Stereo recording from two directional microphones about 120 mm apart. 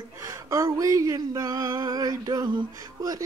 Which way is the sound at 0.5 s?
25° right (ahead or behind).